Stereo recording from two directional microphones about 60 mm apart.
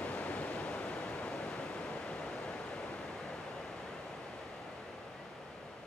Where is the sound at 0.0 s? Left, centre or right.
Left.